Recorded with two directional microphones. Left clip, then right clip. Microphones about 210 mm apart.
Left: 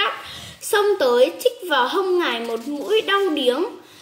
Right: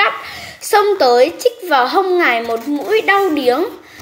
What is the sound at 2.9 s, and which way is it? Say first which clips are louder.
Speech: right 6 dB; 20° right (ahead or behind).